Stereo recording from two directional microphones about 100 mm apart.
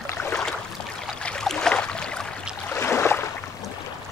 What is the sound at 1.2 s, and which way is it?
Boat, 10° left (ahead or behind).